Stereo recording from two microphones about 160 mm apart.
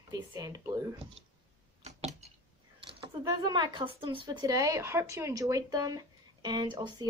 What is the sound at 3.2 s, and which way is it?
A woman's voice, 25° right (ahead or behind).